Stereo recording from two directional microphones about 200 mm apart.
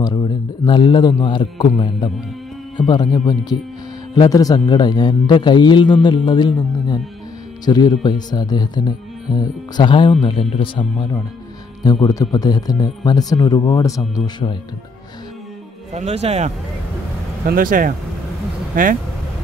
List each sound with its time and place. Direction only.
0.0 s a man's voice: 20° left (ahead or behind)
15.9 s speech: 35° right (ahead or behind)
17.5 s speech: 45° right (ahead or behind)